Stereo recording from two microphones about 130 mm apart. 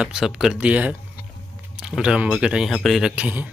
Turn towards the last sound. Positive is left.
turn(degrees=-10)  # may be behind; listen again after turning